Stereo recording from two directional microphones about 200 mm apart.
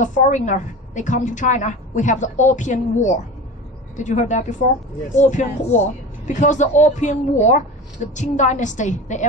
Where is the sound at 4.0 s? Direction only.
35° left (ahead or behind).